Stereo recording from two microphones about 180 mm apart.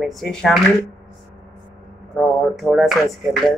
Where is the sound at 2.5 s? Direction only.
Centre (ahead or behind).